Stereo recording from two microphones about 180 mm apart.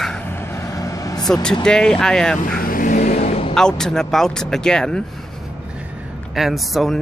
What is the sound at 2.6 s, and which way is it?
Vehicle, 50° left (ahead or behind).